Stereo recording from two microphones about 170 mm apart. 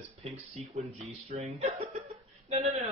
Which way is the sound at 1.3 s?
40° right (ahead or behind).